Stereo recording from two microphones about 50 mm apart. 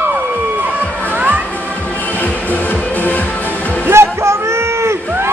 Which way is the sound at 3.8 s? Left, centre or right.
Right.